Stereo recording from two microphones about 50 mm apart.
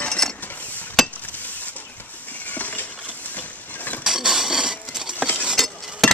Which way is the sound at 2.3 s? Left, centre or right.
Left.